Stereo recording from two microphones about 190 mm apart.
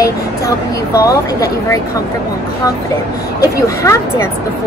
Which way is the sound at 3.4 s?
15° left (ahead or behind).